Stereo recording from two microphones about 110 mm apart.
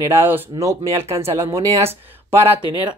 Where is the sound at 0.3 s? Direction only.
15° right (ahead or behind).